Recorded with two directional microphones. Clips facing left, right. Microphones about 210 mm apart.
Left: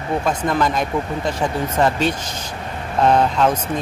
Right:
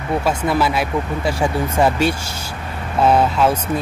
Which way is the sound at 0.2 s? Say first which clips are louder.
Right 1 dB; 10° right (ahead or behind).